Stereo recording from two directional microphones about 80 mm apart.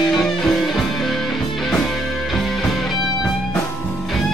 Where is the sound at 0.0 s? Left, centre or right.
Centre.